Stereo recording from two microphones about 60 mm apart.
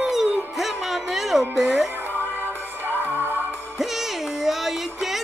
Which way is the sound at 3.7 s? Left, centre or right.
Centre.